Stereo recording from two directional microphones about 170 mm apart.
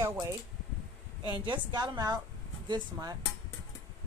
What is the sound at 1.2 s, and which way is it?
A woman's voice, 30° right (ahead or behind).